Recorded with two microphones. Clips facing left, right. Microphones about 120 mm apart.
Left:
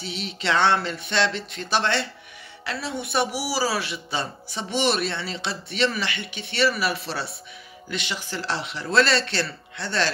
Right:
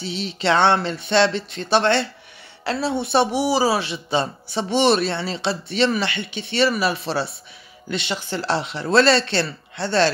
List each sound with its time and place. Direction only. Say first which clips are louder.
0.0 s speech: right 6 dB; 30° right (ahead or behind)